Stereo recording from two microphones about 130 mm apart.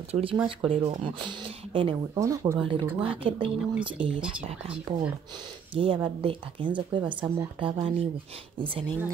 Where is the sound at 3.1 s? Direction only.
45° right (ahead or behind).